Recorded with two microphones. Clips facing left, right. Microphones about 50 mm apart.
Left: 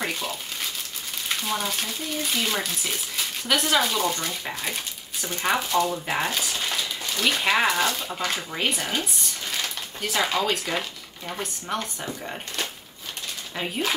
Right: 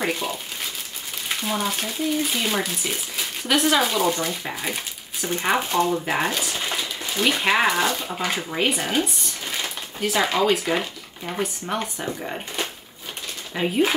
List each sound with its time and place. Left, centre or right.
0.0 s speech: centre; by 5.9 s right
6.0 s speech: centre
9.5 s a sound: centre
10.0 s speech: centre
13.6 s speech: centre